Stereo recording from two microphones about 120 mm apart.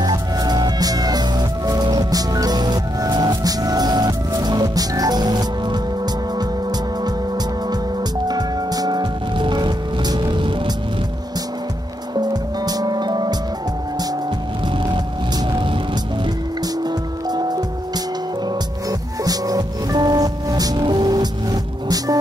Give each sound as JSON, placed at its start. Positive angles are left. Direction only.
{"t": 0.0, "sound": "music", "side_deg": -35}
{"t": 8.3, "sound": "music", "side_deg": -35}
{"t": 12.2, "sound": "music", "side_deg": -35}
{"t": 16.8, "sound": "music", "side_deg": -35}
{"t": 18.9, "sound": "music", "side_deg": -30}